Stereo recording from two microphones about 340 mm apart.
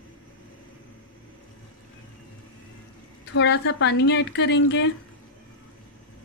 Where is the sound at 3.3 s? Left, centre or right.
Left.